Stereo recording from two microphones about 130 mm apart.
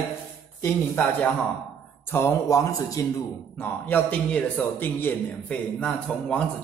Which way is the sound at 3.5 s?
15° left (ahead or behind).